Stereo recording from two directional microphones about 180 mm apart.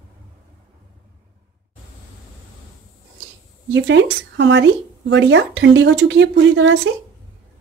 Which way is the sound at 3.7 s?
85° right.